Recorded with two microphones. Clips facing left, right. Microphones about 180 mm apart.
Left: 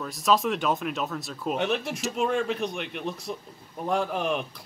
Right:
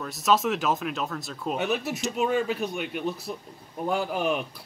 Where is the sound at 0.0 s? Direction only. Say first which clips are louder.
Even; centre (ahead or behind).